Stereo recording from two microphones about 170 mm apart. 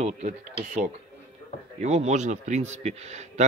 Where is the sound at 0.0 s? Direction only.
40° right (ahead or behind).